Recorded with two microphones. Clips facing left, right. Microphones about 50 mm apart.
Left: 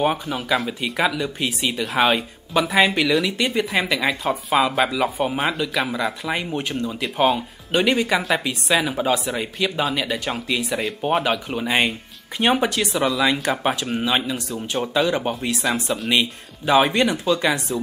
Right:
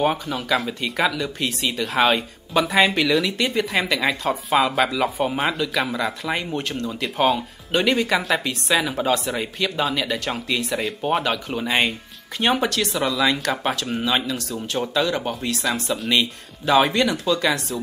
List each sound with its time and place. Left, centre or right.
0.0 s speech: centre
17.0 s speech: left